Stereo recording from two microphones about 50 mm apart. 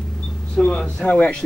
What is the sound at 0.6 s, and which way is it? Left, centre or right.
Speech, centre.